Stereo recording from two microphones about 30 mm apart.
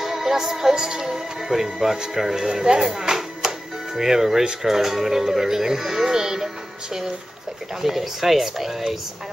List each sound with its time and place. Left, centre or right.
0.0 s music: centre
2.1 s speech: centre
4.6 s music: centre
6.0 s speech: right
7.8 s music: centre